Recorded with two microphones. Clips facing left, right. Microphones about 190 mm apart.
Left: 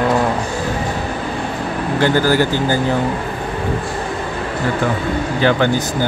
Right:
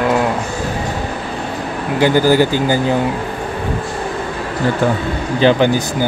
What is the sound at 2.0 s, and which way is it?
Speech, 15° right (ahead or behind).